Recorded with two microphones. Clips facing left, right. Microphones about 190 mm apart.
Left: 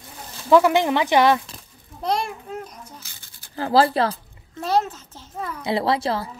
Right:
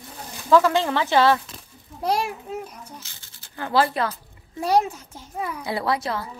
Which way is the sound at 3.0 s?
15° left (ahead or behind).